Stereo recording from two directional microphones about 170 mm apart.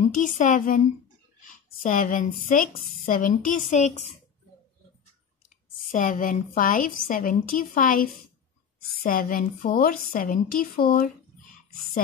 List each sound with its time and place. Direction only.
0.0 s a woman's voice: 50° left (ahead or behind)
5.9 s a woman's voice: 50° left (ahead or behind)